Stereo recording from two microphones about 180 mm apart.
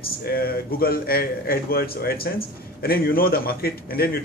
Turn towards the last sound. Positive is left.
turn(degrees=60)  # may be behind; listen again after turning